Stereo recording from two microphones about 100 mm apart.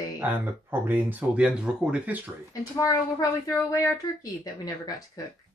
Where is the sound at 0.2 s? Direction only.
20° right (ahead or behind).